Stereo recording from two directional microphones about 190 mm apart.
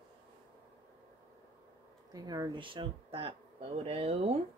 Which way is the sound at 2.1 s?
20° right (ahead or behind).